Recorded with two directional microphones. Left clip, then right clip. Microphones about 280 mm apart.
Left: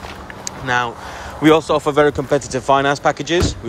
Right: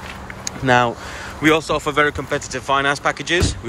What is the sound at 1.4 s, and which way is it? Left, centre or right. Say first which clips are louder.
Speech: left 4 dB; centre.